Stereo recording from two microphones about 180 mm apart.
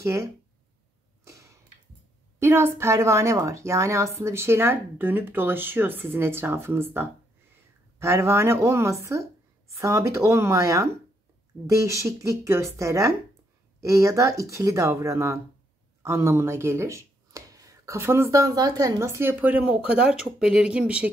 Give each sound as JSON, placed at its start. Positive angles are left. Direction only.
{"t": 0.0, "sound": "speech", "side_deg": -15}
{"t": 1.2, "sound": "tick-tock", "side_deg": -15}
{"t": 2.3, "sound": "speech", "side_deg": -15}